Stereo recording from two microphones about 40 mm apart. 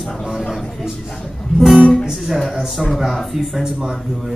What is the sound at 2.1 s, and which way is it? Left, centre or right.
Speech, centre.